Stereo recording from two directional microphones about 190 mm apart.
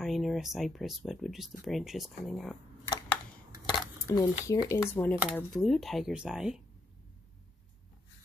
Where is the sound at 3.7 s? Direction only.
20° left (ahead or behind).